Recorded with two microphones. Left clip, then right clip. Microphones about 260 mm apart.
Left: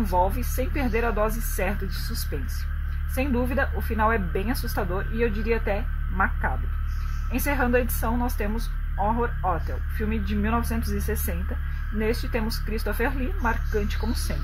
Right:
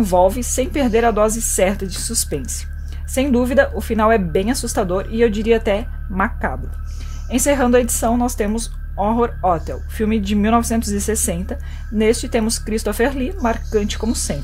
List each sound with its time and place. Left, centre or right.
0.0 s speech: right
3.2 s speech: right